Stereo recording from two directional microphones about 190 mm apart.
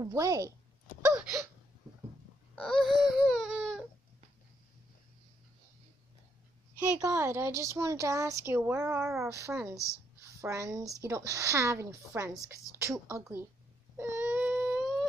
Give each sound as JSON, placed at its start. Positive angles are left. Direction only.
{"t": 0.0, "sound": "speech", "side_deg": -15}
{"t": 1.0, "sound": "a sound", "side_deg": -10}
{"t": 2.5, "sound": "baby cry", "side_deg": 0}
{"t": 7.0, "sound": "speech", "side_deg": -15}
{"t": 13.9, "sound": "baby cry", "side_deg": -10}